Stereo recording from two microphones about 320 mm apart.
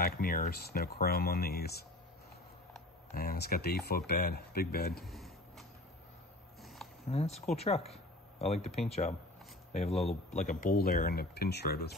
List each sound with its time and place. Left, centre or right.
0.0 s speech: left
3.2 s speech: left
5.0 s a sound: centre
7.1 s speech: centre